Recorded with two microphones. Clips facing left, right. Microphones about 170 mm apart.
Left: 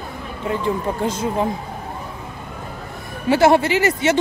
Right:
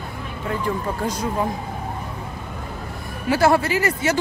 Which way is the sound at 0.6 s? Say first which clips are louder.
Left 3 dB; 20° left (ahead or behind).